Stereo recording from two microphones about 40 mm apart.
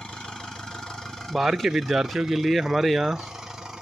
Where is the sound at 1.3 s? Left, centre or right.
Centre.